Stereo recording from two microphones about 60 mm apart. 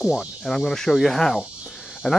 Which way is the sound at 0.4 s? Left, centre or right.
Centre.